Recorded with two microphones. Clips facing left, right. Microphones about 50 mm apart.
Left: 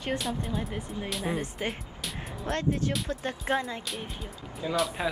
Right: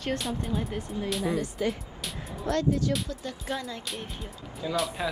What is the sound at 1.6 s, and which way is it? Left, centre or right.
Speech, left.